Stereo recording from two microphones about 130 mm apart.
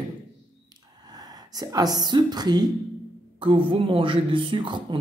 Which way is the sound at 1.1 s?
30° right (ahead or behind).